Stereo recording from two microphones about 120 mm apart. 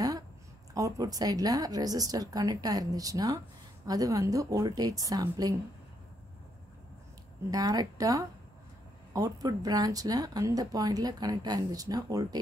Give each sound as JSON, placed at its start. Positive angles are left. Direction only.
{"t": 0.7, "sound": "speech", "side_deg": -30}
{"t": 7.5, "sound": "speech", "side_deg": -30}